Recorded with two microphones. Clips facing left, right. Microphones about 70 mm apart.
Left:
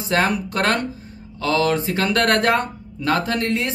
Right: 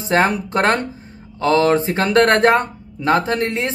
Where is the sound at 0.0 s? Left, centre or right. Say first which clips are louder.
Right 3 dB; right.